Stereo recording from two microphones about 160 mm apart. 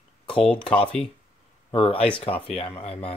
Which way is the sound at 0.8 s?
5° left (ahead or behind).